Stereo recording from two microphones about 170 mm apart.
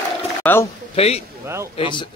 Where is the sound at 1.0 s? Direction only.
35° left (ahead or behind).